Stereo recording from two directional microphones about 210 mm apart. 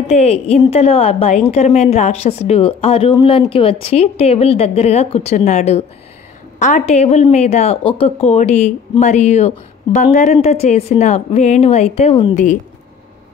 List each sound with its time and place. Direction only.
0.1 s a woman's voice: 30° left (ahead or behind)